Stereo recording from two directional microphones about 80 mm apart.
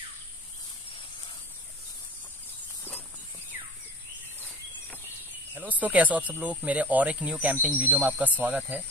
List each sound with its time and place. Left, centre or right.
5.5 s speech: centre